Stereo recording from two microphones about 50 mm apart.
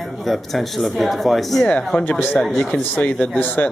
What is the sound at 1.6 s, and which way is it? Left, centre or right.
Speech, left.